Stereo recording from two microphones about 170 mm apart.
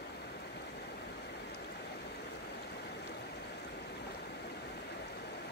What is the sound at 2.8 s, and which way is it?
Stream, 80° left.